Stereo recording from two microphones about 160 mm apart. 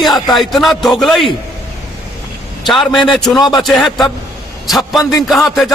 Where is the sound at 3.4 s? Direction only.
25° left (ahead or behind).